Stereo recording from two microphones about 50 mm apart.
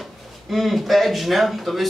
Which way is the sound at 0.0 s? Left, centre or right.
Centre.